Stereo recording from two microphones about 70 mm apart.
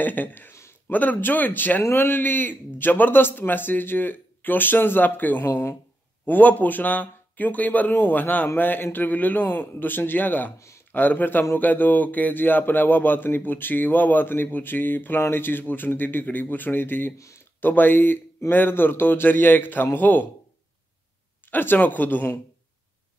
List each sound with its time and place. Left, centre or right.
0.0 s speech: left
0.5 s a sound: left
0.9 s speech: left
6.2 s speech: left
21.5 s speech: left